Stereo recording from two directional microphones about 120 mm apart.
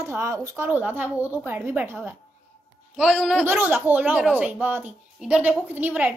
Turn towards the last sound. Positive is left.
turn(degrees=-15)  # may be behind; listen again after turning